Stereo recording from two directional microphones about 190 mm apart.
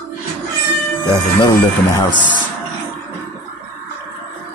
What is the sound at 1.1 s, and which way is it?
Speech, 15° left (ahead or behind).